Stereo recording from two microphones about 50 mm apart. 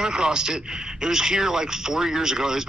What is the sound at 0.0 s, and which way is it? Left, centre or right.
A man's voice, centre.